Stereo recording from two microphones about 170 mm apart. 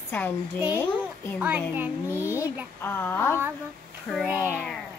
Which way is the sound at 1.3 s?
10° right (ahead or behind).